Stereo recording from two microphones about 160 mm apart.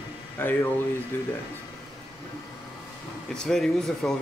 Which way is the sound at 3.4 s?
5° left (ahead or behind).